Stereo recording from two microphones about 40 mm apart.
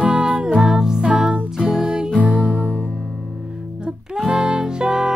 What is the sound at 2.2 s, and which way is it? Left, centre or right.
Music, right.